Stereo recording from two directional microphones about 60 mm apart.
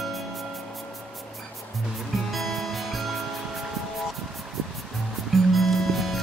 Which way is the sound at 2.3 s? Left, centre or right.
Centre.